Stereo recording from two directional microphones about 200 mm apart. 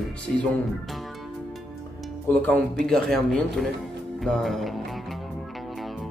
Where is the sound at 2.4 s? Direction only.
5° left (ahead or behind).